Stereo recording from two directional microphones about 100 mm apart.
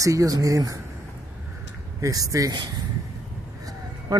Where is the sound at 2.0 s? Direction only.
35° right (ahead or behind).